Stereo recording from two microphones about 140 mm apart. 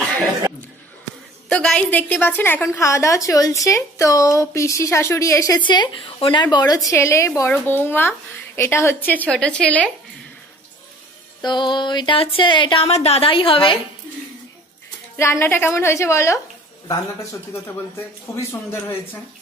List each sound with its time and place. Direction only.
1.5 s a woman's voice: 5° left (ahead or behind); by 5.6 s 25° left (ahead or behind)
5.6 s a woman's voice: 35° left (ahead or behind); by 9.8 s 10° left (ahead or behind)
11.4 s speech: 35° left (ahead or behind)
12.9 s speech: 45° left (ahead or behind)
15.1 s a woman's voice: 20° left (ahead or behind)